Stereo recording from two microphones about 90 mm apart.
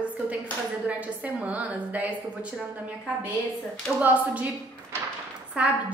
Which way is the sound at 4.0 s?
15° right (ahead or behind).